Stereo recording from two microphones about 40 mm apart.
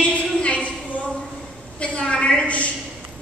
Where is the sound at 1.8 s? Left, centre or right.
Left.